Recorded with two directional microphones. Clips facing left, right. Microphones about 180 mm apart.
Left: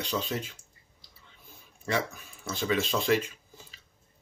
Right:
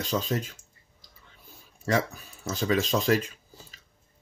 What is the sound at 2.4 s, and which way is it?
Speech, 40° right (ahead or behind).